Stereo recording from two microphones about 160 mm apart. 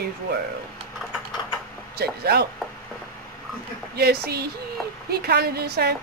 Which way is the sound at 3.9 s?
85° right.